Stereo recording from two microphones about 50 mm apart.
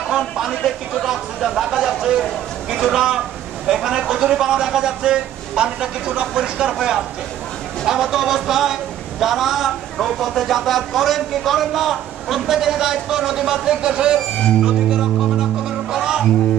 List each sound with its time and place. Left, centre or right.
0.7 s a man's voice: centre
14.6 s music: centre